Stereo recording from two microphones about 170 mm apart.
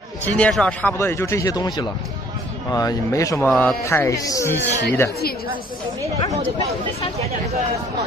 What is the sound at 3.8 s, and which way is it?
Speech, 15° left (ahead or behind).